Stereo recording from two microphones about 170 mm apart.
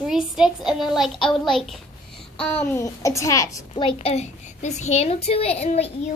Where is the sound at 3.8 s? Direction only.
35° left (ahead or behind).